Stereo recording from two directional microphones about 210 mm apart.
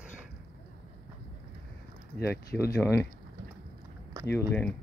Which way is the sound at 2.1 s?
50° left (ahead or behind).